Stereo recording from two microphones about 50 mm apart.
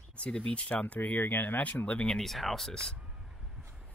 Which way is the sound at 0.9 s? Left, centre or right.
Left.